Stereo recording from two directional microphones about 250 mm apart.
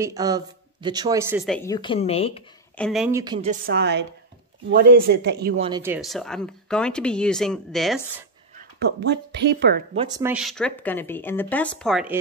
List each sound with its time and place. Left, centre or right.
0.0 s speech: centre
1.4 s speech: centre
1.7 s a woman's voice: centre
2.8 s speech: centre
3.1 s speech: centre
3.3 s speech: right
5.6 s speech: centre
8.5 s speech: right
9.9 s speech: centre
10.3 s speech: centre